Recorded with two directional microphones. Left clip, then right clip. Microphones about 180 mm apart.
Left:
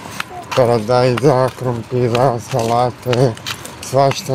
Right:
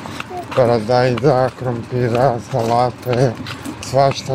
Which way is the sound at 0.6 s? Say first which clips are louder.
Left 1 dB; 20° left (ahead or behind).